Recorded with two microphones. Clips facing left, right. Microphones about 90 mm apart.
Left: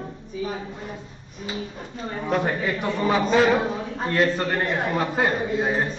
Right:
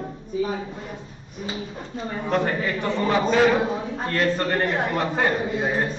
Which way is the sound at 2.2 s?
10° left (ahead or behind).